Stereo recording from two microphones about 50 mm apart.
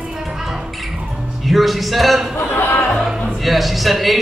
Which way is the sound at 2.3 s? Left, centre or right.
Left.